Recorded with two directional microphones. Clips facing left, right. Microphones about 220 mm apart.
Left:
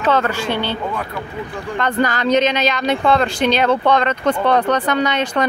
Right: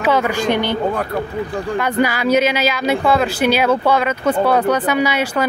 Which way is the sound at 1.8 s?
10° right (ahead or behind).